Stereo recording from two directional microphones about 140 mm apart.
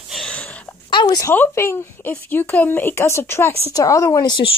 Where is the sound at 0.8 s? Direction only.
35° left (ahead or behind).